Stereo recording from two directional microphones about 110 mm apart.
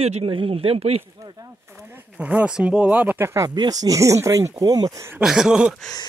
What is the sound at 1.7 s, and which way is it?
Speech, 25° right (ahead or behind).